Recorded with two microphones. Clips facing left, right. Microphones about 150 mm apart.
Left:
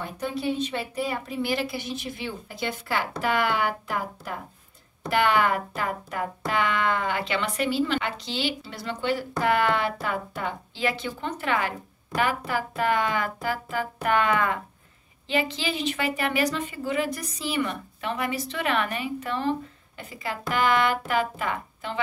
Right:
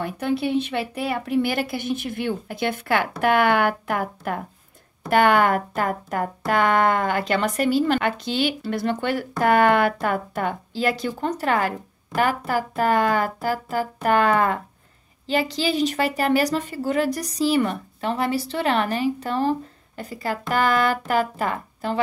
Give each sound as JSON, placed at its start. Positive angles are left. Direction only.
{"t": 0.0, "sound": "a woman's voice", "side_deg": -65}